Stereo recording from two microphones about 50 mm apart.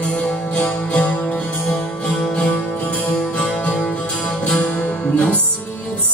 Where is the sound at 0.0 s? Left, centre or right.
Left.